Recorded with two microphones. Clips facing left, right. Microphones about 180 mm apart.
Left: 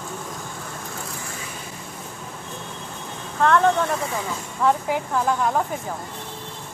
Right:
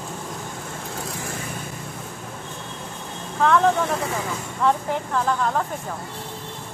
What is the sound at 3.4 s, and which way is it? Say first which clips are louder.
Speech: even; centre (ahead or behind).